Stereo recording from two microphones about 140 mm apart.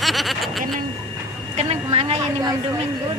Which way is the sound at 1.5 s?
50° right (ahead or behind).